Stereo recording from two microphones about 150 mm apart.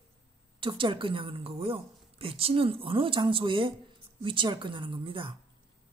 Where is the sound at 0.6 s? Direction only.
35° right (ahead or behind).